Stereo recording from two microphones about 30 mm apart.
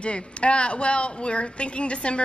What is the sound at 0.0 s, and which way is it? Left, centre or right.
Speech, left.